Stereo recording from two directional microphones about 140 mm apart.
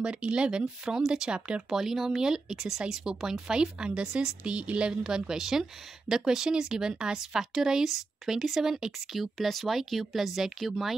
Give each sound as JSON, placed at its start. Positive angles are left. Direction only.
{"t": 0.0, "sound": "speech", "side_deg": -5}